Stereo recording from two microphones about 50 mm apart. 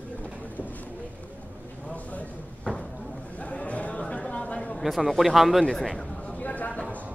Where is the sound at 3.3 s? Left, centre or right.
Left.